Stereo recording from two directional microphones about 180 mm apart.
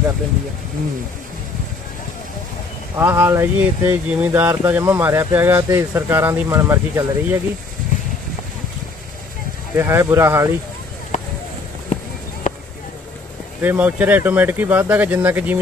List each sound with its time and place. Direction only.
3.0 s speech: 15° right (ahead or behind)
9.8 s speech: 15° right (ahead or behind)
11.1 s a sound: 45° left (ahead or behind)
13.6 s speech: 10° right (ahead or behind)